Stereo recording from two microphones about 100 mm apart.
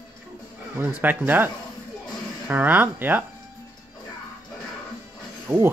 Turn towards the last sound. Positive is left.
turn(degrees=-25)  # may be behind; listen again after turning